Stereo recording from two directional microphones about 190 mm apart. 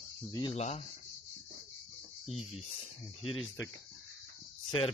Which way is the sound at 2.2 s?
Centre (ahead or behind).